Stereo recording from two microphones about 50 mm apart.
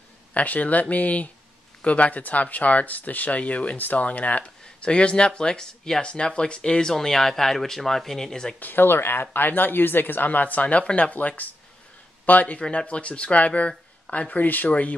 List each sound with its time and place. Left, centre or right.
0.3 s speech: left; by 8.5 s centre
8.5 s speech: left
12.5 s speech: left